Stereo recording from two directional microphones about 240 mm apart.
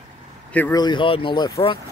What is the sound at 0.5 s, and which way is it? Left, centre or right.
Speech, centre.